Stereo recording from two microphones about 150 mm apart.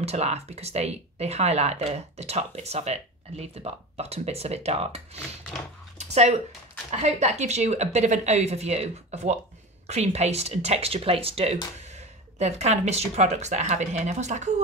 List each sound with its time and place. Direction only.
0.0 s speech: 45° right (ahead or behind)
5.9 s a sound: 45° right (ahead or behind)
6.9 s speech: 50° right (ahead or behind)